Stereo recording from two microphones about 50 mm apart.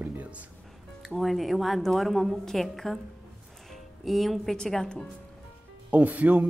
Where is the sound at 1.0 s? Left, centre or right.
Centre.